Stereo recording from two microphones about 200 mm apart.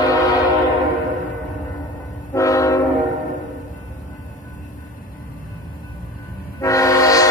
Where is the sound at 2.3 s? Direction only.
15° left (ahead or behind).